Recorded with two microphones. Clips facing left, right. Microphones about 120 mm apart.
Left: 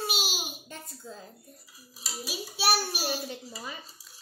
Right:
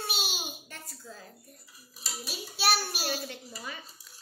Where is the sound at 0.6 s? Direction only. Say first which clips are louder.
Left 3 dB; 20° left (ahead or behind).